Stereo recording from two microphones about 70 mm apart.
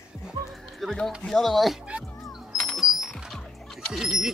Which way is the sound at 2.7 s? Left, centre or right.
Centre.